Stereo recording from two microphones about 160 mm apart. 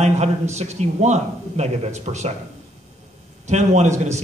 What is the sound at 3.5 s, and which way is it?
Speech, 45° right (ahead or behind).